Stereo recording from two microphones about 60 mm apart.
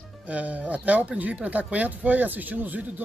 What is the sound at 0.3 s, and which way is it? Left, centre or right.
Speech, right.